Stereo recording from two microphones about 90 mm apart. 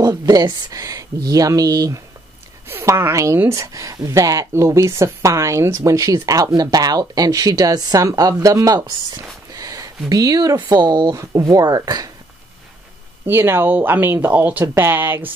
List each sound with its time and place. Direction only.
0.0 s speech: 45° right (ahead or behind)
2.7 s speech: 25° right (ahead or behind)
9.5 s a sound: 40° right (ahead or behind)
10.7 s speech: 50° right (ahead or behind)
11.1 s speech: 40° right (ahead or behind)
13.3 s speech: 25° right (ahead or behind)